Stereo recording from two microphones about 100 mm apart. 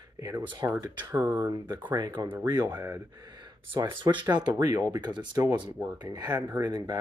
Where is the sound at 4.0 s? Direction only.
50° right (ahead or behind).